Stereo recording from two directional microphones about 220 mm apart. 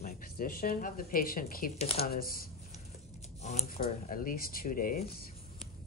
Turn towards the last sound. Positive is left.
turn(degrees=40)  # may be behind; listen again after turning